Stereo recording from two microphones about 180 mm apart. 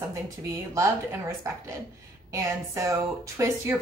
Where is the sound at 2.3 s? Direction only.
15° right (ahead or behind).